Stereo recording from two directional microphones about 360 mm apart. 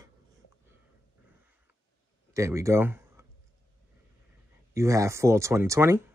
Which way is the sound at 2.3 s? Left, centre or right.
Centre.